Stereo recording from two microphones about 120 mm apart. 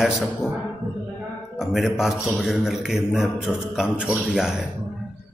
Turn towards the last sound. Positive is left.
turn(degrees=-5)  # may be behind; listen again after turning